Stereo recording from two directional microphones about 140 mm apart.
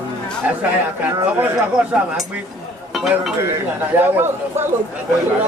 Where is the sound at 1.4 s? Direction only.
5° right (ahead or behind).